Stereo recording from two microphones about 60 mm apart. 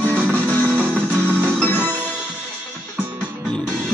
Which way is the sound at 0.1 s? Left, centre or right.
Right.